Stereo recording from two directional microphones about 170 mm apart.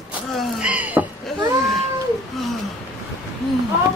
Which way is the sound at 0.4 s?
5° right (ahead or behind).